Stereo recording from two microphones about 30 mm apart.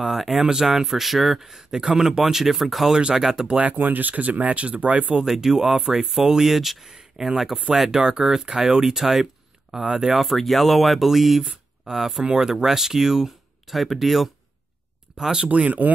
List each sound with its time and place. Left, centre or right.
0.0 s speech: centre
0.4 s speech: centre
1.5 s speech: centre
3.4 s speech: right
3.7 s speech: right
4.1 s speech: right
5.2 s speech: centre
10.1 s speech: centre
12.3 s speech: right
12.6 s speech: centre
15.1 s speech: right
15.4 s speech: right